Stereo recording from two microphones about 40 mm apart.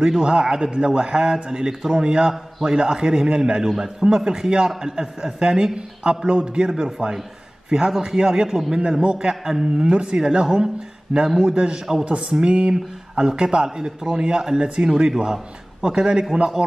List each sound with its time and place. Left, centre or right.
0.0 s a man's voice: centre
8.7 s a man's voice: right